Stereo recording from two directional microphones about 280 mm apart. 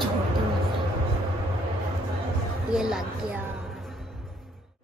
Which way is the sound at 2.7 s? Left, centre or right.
Centre.